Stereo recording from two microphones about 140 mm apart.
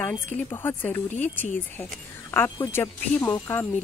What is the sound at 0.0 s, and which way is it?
Speech, 10° left (ahead or behind).